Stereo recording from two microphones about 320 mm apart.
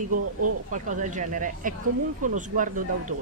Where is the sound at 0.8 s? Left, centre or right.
Right.